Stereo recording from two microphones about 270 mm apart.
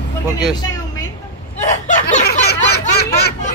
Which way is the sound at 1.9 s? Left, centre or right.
Left.